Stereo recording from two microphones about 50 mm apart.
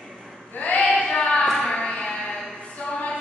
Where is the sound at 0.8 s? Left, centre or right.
Centre.